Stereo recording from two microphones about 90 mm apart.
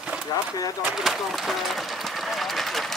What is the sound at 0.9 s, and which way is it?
Speech, 5° right (ahead or behind).